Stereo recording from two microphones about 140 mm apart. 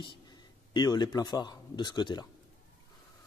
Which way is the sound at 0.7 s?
30° left (ahead or behind).